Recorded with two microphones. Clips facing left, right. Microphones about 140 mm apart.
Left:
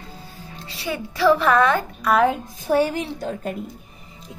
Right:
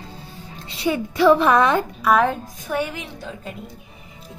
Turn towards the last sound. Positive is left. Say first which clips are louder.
# left 7 dB
turn(degrees=40)  # may be behind; listen again after turning